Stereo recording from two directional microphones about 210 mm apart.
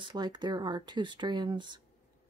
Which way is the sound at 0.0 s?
20° right (ahead or behind).